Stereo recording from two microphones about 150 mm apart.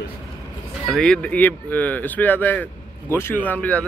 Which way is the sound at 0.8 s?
Centre (ahead or behind).